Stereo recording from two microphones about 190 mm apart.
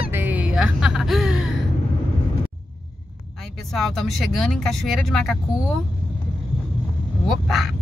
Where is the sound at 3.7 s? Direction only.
Centre (ahead or behind).